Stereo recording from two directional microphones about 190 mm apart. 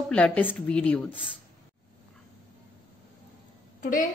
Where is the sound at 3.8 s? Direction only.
45° left (ahead or behind).